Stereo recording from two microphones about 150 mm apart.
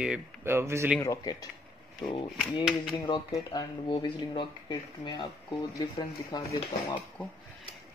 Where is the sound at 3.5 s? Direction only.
30° left (ahead or behind).